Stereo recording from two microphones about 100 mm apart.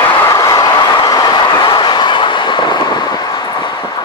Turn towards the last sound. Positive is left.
turn(degrees=50)  # may be behind; listen again after turning